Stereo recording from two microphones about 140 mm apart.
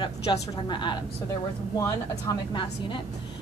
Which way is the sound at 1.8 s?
20° left (ahead or behind).